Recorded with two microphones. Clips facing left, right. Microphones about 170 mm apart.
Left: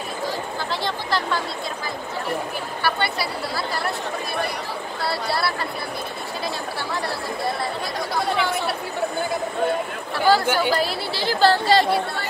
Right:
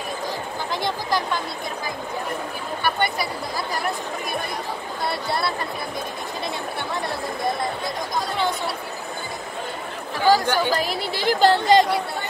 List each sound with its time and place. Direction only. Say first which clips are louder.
0.8 s a sound: right 2 dB; 15° right (ahead or behind)
2.8 s speech: right 1 dB; 20° right (ahead or behind)
8.4 s speech: left 1 dB; 20° right (ahead or behind)
10.1 s speech: even; 15° right (ahead or behind)
10.5 s a woman's voice: left 1 dB; 10° left (ahead or behind)
10.8 s speech: left 1 dB; 15° right (ahead or behind)